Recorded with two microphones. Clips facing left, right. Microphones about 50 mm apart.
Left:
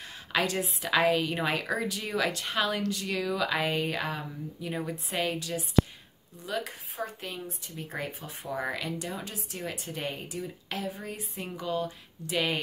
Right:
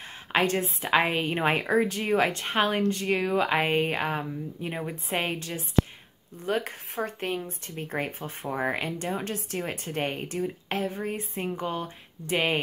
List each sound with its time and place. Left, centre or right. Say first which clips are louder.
0.0 s a woman's voice: right 4 dB; right
9.6 s speech: right 4 dB; right
10.4 s a woman's voice: right 6 dB; right